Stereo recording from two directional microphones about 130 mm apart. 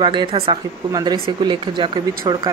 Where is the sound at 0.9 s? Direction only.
35° right (ahead or behind).